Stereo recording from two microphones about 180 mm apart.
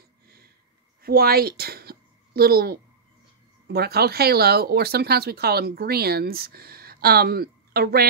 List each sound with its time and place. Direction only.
1.0 s speech: 60° right (ahead or behind)